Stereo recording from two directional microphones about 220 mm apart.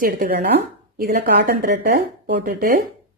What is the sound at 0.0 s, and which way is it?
Speech, 40° right (ahead or behind).